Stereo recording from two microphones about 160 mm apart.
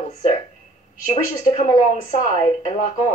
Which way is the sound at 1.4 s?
45° left (ahead or behind).